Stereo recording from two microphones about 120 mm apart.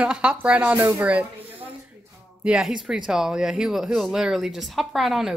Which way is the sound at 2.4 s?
5° right (ahead or behind).